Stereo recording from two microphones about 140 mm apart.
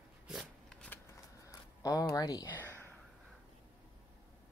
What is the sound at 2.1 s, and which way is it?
Speech, 25° left (ahead or behind).